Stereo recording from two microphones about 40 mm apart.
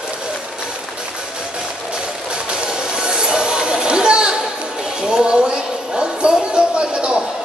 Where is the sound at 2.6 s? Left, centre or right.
Right.